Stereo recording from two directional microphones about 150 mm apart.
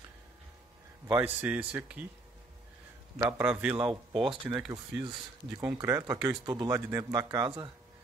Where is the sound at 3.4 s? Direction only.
10° right (ahead or behind); by 7.7 s 30° right (ahead or behind).